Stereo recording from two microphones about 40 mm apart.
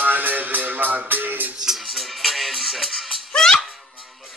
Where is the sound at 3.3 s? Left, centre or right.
Centre.